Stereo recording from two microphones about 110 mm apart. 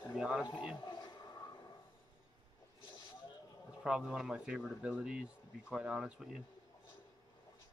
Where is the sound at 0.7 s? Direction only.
40° left (ahead or behind).